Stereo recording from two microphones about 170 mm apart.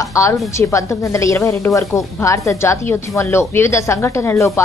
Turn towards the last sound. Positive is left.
turn(degrees=15)  # may be behind; listen again after turning